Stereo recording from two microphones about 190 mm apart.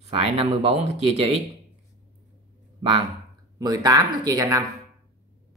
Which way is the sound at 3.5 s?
20° right (ahead or behind).